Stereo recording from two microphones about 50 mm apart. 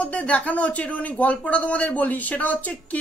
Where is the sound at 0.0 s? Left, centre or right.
Left.